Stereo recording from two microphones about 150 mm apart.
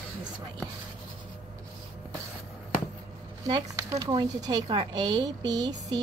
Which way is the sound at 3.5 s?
30° right (ahead or behind).